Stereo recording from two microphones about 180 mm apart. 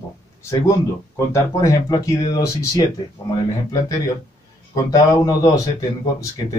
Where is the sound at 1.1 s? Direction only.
20° left (ahead or behind).